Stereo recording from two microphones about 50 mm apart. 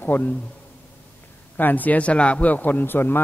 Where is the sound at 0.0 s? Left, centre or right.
Left.